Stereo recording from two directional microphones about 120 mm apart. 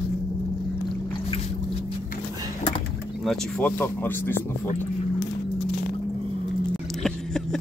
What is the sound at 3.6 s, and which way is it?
Speech, 15° left (ahead or behind).